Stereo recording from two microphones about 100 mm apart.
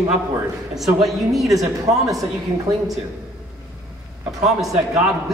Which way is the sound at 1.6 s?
35° right (ahead or behind).